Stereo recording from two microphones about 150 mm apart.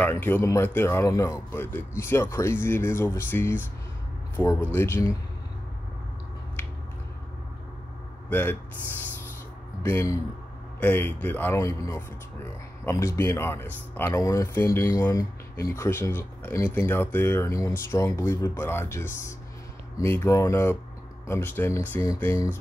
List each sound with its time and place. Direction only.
0.2 s speech: 15° left (ahead or behind)
8.3 s speech: 15° left (ahead or behind)
9.8 s speech: 20° left (ahead or behind)